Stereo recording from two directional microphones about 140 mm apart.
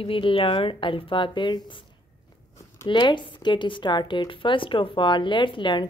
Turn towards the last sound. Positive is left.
turn(degrees=35)  # may be behind; listen again after turning